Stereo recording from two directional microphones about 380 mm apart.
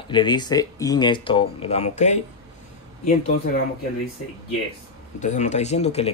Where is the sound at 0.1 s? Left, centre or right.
Centre.